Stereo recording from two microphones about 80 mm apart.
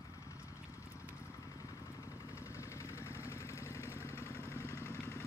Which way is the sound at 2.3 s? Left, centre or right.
Left.